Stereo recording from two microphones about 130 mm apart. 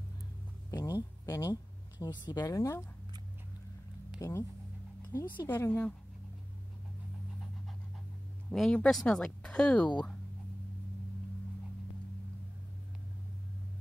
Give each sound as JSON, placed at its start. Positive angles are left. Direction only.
{"t": 0.7, "sound": "a sound", "side_deg": 25}
{"t": 1.2, "sound": "speech", "side_deg": 25}
{"t": 4.2, "sound": "speech", "side_deg": 20}
{"t": 5.5, "sound": "speech", "side_deg": 15}
{"t": 8.5, "sound": "speech", "side_deg": 5}